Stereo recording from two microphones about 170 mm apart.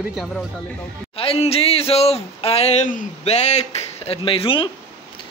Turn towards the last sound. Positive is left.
turn(degrees=30)  # may be behind; listen again after turning